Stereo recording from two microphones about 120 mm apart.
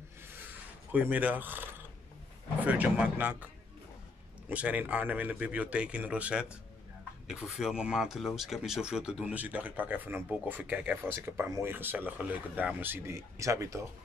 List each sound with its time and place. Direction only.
0.9 s speech: 15° right (ahead or behind)
4.5 s speech: 10° right (ahead or behind)